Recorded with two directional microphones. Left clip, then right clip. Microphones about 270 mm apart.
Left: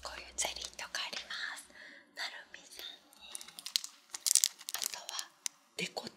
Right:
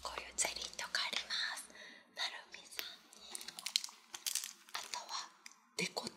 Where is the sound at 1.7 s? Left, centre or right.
Left.